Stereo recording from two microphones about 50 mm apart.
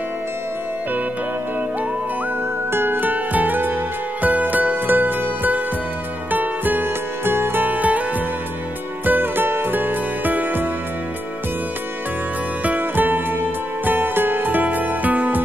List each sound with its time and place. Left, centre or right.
2.7 s music: right
7.6 s music: right
9.0 s music: right
12.6 s music: right